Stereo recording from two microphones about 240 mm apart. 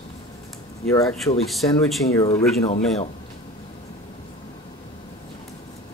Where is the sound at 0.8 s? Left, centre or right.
Centre.